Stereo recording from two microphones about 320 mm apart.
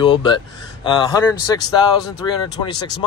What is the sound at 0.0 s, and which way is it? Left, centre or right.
Speech, centre.